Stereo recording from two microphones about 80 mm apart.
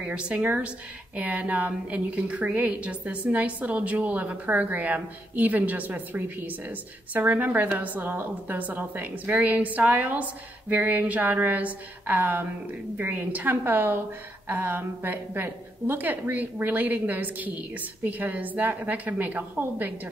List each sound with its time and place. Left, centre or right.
0.0 s a woman's voice: centre